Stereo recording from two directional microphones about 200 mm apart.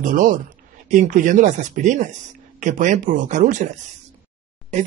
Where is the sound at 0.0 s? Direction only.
40° right (ahead or behind).